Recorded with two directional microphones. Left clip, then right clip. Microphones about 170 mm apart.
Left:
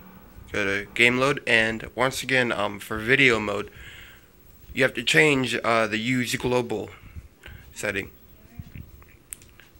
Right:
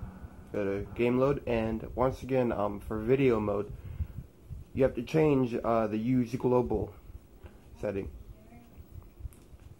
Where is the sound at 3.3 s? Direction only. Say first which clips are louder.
Left 4 dB; 45° left (ahead or behind).